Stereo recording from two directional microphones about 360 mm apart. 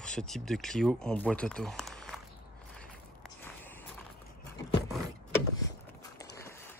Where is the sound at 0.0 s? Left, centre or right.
Centre.